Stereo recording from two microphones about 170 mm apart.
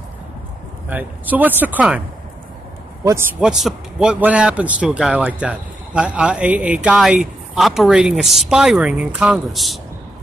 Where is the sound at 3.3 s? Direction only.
5° right (ahead or behind).